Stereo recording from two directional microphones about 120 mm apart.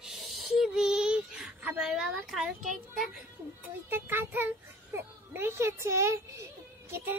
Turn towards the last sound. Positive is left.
turn(degrees=-20)  # may be behind; listen again after turning